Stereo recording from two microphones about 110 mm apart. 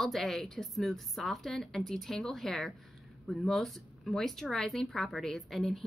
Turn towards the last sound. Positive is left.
turn(degrees=5)  # may be behind; listen again after turning